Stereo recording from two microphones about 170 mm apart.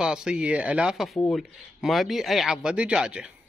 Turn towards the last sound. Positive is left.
turn(degrees=-5)  # may be behind; listen again after turning